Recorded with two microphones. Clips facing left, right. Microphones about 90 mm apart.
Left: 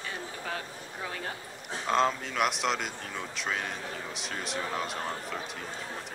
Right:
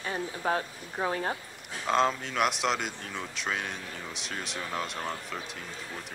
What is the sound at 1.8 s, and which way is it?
Speech, centre (ahead or behind).